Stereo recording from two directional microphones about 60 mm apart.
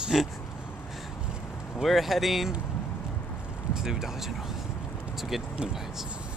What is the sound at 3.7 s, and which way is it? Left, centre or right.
Speech, centre.